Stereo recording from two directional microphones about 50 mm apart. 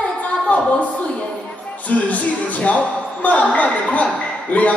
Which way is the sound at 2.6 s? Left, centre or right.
Left.